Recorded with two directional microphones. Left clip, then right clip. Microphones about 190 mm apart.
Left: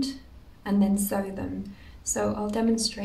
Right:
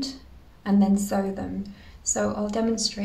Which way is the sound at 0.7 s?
5° right (ahead or behind).